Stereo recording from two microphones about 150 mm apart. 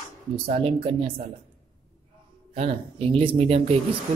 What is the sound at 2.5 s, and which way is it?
Speech, 40° right (ahead or behind).